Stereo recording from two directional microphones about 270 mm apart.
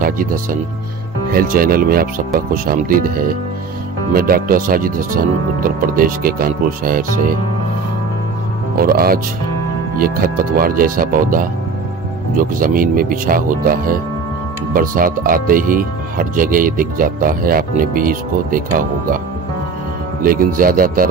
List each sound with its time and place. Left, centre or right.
0.0 s speech: right
8.7 s speech: right
20.2 s speech: right